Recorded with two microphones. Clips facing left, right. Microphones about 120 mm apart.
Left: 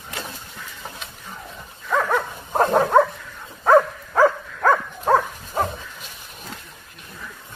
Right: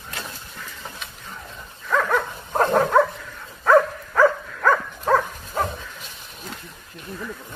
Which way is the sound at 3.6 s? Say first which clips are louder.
Left 1 dB; 20° left (ahead or behind).